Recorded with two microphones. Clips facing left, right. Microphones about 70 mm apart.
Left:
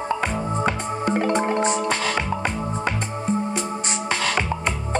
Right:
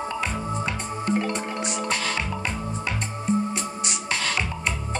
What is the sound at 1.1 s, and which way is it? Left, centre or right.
Music, left.